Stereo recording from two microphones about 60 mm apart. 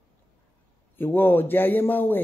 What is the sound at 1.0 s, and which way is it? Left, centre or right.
Speech, left.